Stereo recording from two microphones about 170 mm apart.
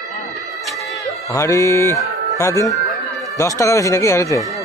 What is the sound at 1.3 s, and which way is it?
Speech, 20° left (ahead or behind).